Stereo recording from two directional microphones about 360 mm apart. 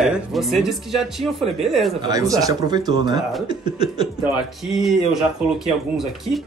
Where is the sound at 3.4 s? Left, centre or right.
Centre.